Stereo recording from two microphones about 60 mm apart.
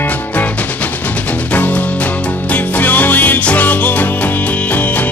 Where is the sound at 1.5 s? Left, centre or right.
Left.